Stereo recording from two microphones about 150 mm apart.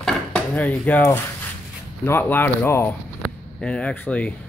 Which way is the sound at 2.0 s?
15° left (ahead or behind).